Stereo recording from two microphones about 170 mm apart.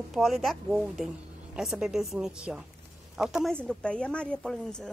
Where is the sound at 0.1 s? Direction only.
Centre (ahead or behind).